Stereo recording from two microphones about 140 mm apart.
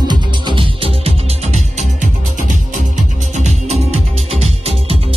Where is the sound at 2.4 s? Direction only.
60° right (ahead or behind).